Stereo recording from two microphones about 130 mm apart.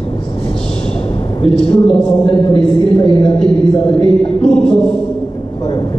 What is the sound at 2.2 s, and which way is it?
Speech, 45° left (ahead or behind).